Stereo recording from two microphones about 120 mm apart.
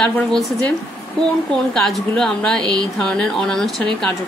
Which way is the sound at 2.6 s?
35° right (ahead or behind).